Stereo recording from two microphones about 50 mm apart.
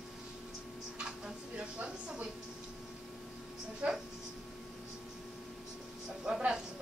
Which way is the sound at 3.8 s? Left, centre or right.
Right.